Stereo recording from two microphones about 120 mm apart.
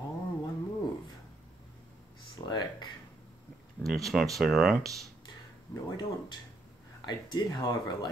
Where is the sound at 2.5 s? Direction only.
35° left (ahead or behind).